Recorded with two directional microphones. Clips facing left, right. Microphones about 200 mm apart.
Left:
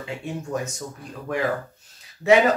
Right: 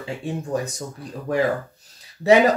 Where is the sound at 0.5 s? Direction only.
35° right (ahead or behind).